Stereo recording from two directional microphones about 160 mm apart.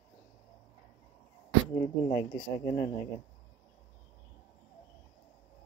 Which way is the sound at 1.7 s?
30° left (ahead or behind).